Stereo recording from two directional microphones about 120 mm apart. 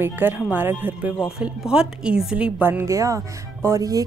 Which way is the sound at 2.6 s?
20° right (ahead or behind).